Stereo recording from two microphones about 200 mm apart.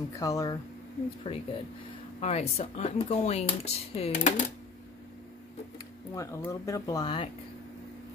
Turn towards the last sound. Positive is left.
turn(degrees=25)  # may be behind; listen again after turning